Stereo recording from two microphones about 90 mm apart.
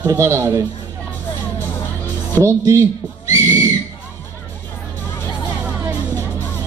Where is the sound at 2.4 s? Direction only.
35° right (ahead or behind).